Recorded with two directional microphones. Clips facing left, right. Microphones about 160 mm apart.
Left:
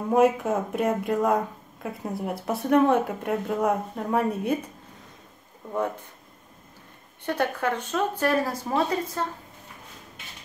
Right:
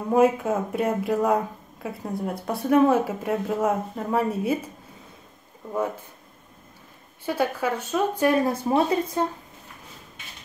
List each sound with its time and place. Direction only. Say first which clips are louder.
0.1 s speech: right 1 dB; centre (ahead or behind)
7.2 s speech: right 1 dB; 10° right (ahead or behind)